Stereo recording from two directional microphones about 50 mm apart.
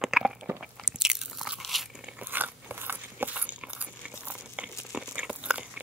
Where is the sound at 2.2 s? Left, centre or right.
Right.